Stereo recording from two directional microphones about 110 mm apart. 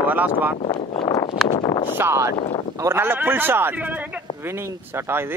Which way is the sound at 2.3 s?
75° left (ahead or behind).